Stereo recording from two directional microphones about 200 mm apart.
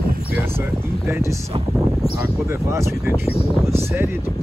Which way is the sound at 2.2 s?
15° right (ahead or behind).